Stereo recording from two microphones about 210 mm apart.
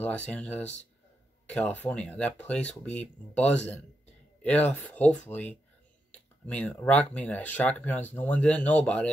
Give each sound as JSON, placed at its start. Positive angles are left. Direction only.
{"t": 0.0, "sound": "speech", "side_deg": 5}